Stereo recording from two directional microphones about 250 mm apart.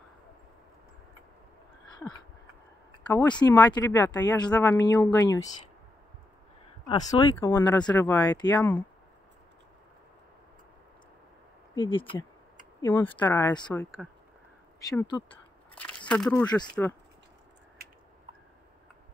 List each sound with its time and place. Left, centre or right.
3.1 s speech: centre
6.9 s speech: centre
11.7 s speech: centre
12.8 s speech: centre
14.0 s speech: centre
14.8 s speech: centre
15.7 s a sound: centre
16.1 s speech: centre
17.8 s a sound: right